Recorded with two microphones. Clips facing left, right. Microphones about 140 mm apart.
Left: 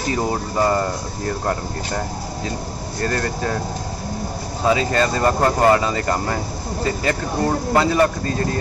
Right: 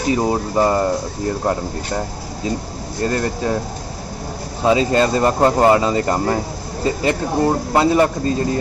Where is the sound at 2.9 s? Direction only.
20° right (ahead or behind).